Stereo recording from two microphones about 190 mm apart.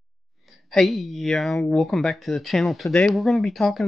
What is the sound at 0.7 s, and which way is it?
Speech, centre (ahead or behind).